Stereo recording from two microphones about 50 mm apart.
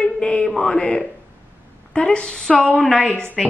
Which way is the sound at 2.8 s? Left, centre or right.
Centre.